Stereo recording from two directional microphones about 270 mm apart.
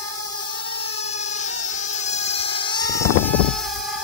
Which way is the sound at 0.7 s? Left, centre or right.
Left.